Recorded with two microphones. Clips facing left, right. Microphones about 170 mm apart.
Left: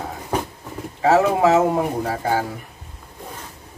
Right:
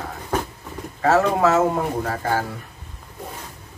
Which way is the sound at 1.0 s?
15° left (ahead or behind).